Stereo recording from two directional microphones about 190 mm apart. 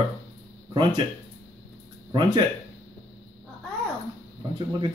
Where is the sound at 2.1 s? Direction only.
25° right (ahead or behind).